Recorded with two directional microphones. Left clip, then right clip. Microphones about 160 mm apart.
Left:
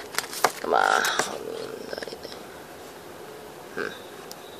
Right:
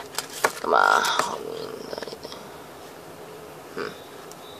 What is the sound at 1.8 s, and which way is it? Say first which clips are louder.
Purr: right 1 dB; 5° right (ahead or behind).